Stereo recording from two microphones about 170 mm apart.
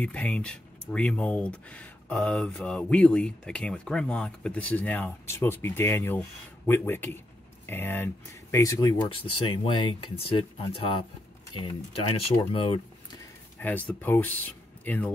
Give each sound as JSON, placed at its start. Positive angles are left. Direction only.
{"t": 0.0, "sound": "speech", "side_deg": 5}
{"t": 13.6, "sound": "speech", "side_deg": 10}